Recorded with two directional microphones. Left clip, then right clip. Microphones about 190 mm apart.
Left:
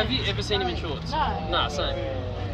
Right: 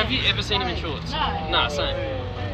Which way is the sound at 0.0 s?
70° left (ahead or behind).